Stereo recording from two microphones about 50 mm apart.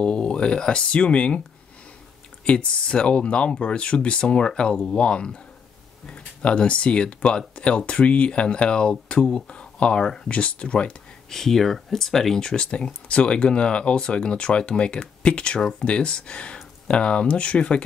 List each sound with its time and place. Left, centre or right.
0.0 s speech: left
2.4 s speech: left
11.2 s speech: centre